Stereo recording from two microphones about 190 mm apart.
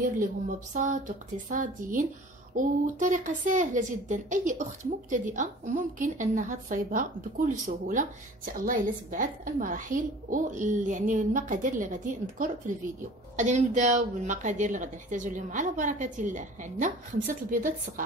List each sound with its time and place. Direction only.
0.0 s a woman's voice: 45° right (ahead or behind)